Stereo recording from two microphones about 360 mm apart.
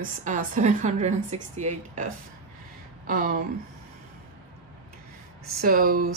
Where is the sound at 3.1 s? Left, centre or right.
Right.